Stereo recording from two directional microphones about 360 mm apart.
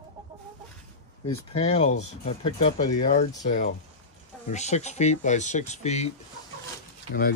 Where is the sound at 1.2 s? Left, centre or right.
Centre.